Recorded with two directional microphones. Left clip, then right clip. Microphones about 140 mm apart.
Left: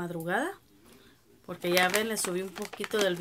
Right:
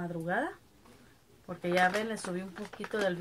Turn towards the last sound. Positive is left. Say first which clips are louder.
# left 4 dB
turn(degrees=25)  # may be behind; listen again after turning